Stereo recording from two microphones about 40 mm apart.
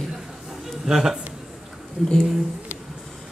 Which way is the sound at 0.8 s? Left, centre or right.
Centre.